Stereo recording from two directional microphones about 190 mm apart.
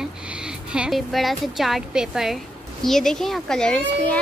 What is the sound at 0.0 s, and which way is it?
A woman's voice, 5° right (ahead or behind).